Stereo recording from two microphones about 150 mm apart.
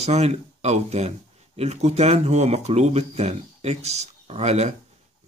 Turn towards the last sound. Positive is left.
turn(degrees=-45)  # may be behind; listen again after turning